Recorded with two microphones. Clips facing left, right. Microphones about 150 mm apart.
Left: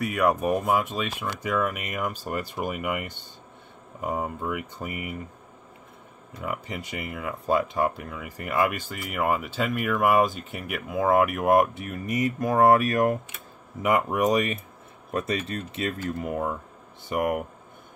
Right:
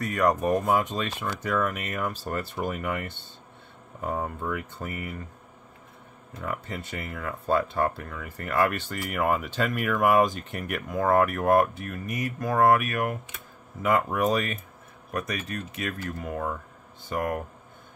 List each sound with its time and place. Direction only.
0.0 s speech: 10° left (ahead or behind)
6.4 s speech: 15° left (ahead or behind); by 13.2 s 35° left (ahead or behind)
13.8 s speech: 15° left (ahead or behind)